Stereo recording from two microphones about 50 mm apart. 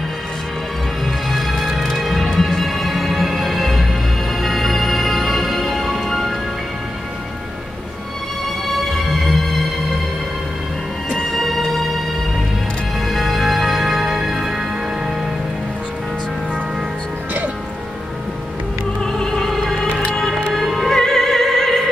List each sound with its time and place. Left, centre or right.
1.0 s music: centre
8.6 s music: centre
11.3 s music: centre
13.0 s music: centre
19.0 s music: centre